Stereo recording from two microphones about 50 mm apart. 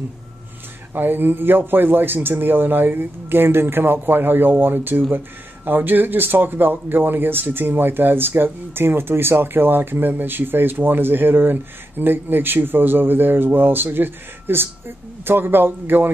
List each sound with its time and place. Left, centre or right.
0.9 s speech: right